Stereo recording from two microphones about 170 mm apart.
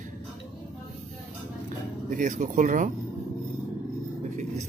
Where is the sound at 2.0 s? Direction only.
50° right (ahead or behind).